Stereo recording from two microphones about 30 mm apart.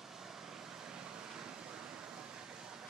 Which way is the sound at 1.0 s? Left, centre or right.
Right.